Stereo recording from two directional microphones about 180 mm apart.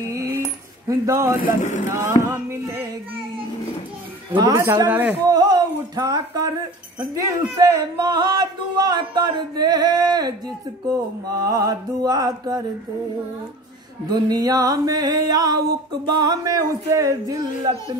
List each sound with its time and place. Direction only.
0.1 s keys jangling: 15° right (ahead or behind)
0.8 s speech: 15° right (ahead or behind)
1.4 s speech: 45° left (ahead or behind)
1.9 s a sound: 15° right (ahead or behind)
4.4 s speech: 20° right (ahead or behind)
5.3 s speech: 20° right (ahead or behind)
14.0 s speech: 20° right (ahead or behind)